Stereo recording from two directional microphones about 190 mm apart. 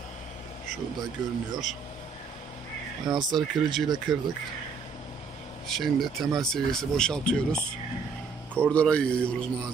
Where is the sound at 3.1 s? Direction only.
20° right (ahead or behind).